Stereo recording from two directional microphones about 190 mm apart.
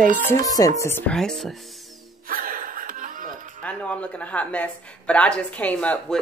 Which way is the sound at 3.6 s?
5° left (ahead or behind).